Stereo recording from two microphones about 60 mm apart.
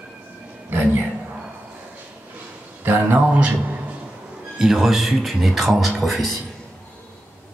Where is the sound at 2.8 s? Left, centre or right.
Right.